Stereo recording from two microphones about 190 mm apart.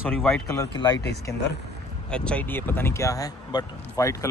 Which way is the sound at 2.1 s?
5° left (ahead or behind).